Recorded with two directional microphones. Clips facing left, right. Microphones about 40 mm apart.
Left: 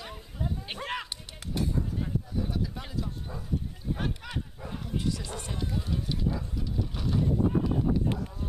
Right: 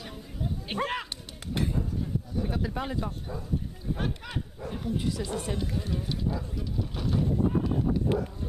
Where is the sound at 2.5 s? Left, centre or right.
Right.